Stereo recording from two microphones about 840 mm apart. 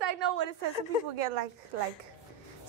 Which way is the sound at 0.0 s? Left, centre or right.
Right.